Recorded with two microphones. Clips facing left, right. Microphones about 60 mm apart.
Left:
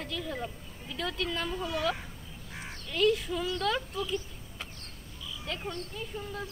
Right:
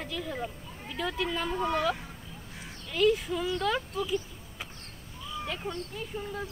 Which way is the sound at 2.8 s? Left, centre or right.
Centre.